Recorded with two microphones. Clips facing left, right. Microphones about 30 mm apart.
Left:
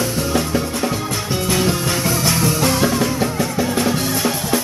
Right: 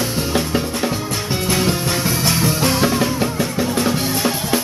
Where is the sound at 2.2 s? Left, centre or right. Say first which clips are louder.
Even; centre.